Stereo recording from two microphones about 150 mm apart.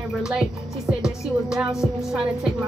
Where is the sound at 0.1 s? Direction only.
5° right (ahead or behind).